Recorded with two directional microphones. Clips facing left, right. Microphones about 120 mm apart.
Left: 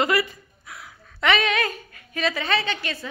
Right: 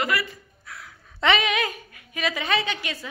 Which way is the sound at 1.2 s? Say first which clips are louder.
Even; 20° right (ahead or behind).